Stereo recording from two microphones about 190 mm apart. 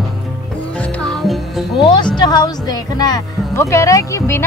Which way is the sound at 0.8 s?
5° left (ahead or behind).